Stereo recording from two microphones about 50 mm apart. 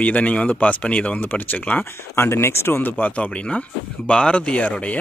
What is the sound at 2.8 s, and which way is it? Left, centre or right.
Speech, left.